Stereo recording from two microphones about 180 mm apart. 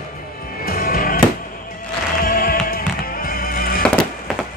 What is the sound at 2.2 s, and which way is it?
Music, 55° left (ahead or behind).